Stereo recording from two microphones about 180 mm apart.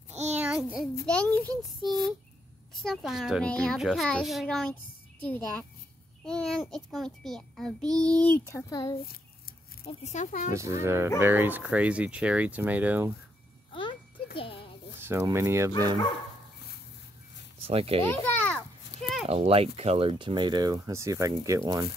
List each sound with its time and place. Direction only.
0.1 s child singing: 40° right (ahead or behind)
0.4 s child singing: 5° right (ahead or behind)
1.0 s child singing: 5° left (ahead or behind)
2.7 s a child's voice: centre (ahead or behind)
5.2 s child singing: 10° left (ahead or behind)
6.2 s a child's voice: 5° left (ahead or behind)
7.9 s child singing: 5° left (ahead or behind)
9.8 s speech: 40° left (ahead or behind)
10.5 s speech: 15° right (ahead or behind)
13.7 s a sound: 30° left (ahead or behind)
15.0 s speech: 15° right (ahead or behind)
17.6 s a child's voice: 35° right (ahead or behind)
18.0 s a child's voice: 10° left (ahead or behind)
19.2 s speech: 35° right (ahead or behind); by 21.8 s 20° right (ahead or behind)